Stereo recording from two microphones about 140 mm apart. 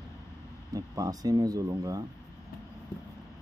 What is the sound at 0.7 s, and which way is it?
Speech, 25° right (ahead or behind).